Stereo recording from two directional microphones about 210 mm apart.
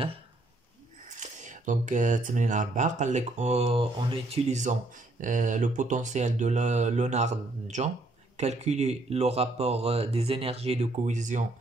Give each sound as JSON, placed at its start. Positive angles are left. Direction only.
{"t": 1.0, "sound": "speech", "side_deg": -35}